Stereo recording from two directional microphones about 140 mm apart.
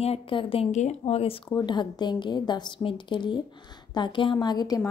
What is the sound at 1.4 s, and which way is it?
A woman's voice, 30° left (ahead or behind).